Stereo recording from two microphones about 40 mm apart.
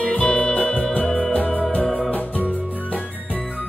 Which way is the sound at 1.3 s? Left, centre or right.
Left.